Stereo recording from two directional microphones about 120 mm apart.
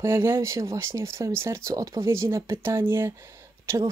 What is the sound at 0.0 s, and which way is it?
Speech, 20° right (ahead or behind).